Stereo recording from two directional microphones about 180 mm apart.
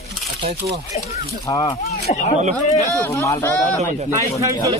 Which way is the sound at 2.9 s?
15° left (ahead or behind).